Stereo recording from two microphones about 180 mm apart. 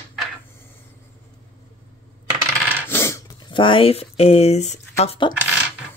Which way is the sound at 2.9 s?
15° left (ahead or behind).